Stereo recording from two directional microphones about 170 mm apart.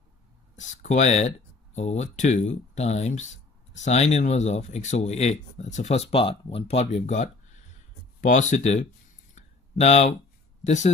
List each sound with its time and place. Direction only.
0.6 s speech: 45° left (ahead or behind)
9.3 s a sound: 40° left (ahead or behind)
10.6 s speech: 45° left (ahead or behind)